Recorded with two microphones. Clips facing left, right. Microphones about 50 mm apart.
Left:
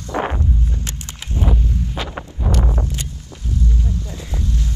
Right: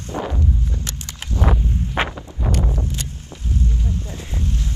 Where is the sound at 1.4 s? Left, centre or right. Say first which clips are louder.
Right 1 dB; right.